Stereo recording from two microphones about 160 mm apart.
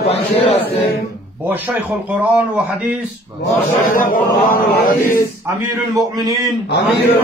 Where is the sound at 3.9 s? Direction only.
60° left (ahead or behind).